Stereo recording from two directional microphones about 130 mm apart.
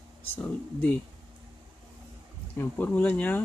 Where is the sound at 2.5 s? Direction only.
15° left (ahead or behind).